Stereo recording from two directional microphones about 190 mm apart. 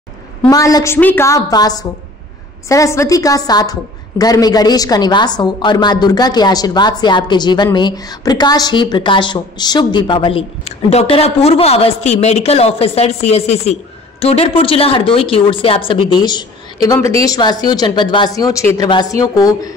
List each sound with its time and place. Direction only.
0.5 s a woman's voice: 20° left (ahead or behind)